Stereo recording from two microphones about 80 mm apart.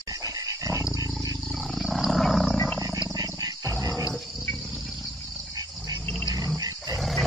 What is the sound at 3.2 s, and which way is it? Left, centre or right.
Wild animals, right.